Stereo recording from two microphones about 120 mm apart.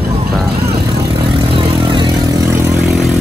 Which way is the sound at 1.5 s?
40° right (ahead or behind).